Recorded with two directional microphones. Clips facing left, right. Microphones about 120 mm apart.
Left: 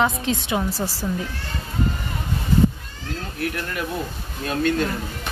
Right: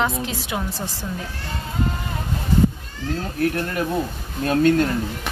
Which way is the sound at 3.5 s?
35° right (ahead or behind).